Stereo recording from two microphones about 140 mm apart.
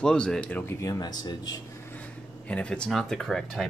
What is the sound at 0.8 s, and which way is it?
Speech, 25° left (ahead or behind).